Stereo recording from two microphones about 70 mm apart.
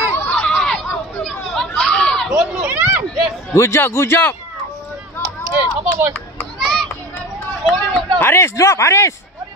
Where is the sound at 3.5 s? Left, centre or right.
Left.